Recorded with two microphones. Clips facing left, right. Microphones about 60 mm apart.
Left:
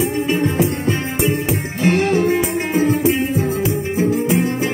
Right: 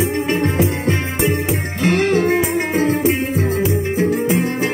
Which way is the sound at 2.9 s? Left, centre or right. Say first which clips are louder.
Left 1 dB; right.